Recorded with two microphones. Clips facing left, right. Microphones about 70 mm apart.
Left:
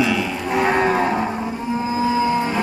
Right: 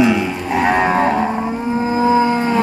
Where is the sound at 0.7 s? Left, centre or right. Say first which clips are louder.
Right 4 dB; right.